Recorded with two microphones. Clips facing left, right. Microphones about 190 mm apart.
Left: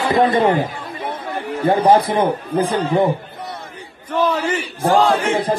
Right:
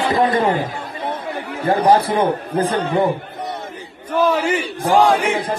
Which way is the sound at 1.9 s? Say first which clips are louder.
Left 1 dB; 15° left (ahead or behind).